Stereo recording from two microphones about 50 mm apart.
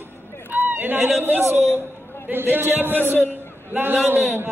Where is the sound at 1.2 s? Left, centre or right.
Right.